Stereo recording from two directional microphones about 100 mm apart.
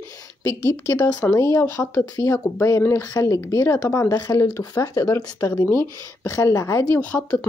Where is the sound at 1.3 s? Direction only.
30° left (ahead or behind).